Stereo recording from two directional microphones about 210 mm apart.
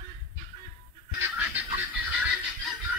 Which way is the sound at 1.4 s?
5° right (ahead or behind).